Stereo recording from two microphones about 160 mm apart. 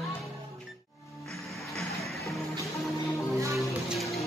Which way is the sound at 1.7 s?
Centre (ahead or behind).